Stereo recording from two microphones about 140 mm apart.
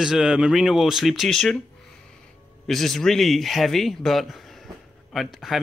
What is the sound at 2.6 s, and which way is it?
Speech, centre (ahead or behind).